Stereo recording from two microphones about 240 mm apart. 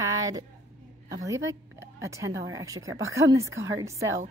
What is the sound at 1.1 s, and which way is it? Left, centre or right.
A woman's voice, centre.